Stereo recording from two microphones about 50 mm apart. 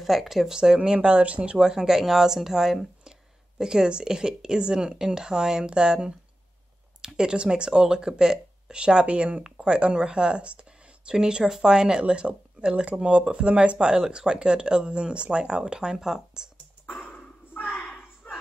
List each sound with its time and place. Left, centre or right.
0.0 s speech: centre
0.6 s a woman's voice: centre
17.6 s a sound: left